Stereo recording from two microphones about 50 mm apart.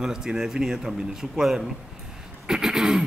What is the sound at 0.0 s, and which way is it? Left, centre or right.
Speech, centre.